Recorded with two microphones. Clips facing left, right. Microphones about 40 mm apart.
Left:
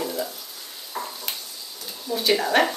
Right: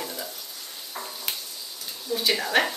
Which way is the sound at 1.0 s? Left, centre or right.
Centre.